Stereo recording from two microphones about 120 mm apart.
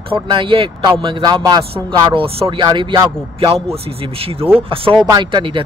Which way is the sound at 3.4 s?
55° right (ahead or behind).